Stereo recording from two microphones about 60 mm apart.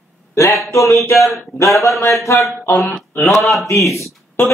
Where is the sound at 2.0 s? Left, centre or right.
Left.